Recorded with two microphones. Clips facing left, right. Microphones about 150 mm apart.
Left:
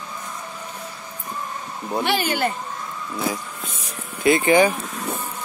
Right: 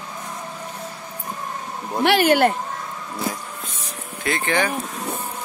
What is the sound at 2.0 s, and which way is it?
Speech, 70° right (ahead or behind).